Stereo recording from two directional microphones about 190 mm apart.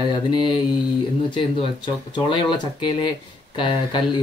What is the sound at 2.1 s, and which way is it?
Speech, 25° left (ahead or behind).